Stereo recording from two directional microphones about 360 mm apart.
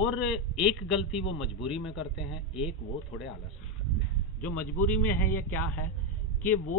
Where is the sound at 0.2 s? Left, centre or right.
Centre.